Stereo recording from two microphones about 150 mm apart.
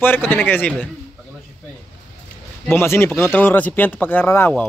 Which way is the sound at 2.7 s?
15° left (ahead or behind).